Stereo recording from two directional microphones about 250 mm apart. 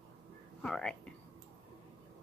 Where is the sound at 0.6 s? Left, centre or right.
Centre.